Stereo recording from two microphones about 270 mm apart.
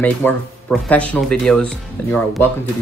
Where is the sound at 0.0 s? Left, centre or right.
Centre.